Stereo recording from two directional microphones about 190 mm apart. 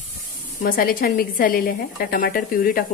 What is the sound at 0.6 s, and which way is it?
Speech, 50° left (ahead or behind).